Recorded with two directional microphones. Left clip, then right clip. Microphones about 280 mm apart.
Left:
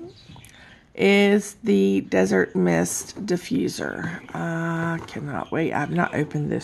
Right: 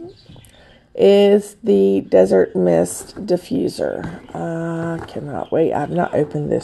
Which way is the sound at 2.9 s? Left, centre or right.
Left.